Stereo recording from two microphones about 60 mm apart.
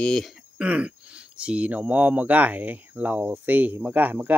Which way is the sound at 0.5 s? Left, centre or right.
Right.